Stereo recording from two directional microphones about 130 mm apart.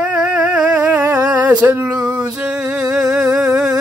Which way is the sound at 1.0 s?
25° right (ahead or behind).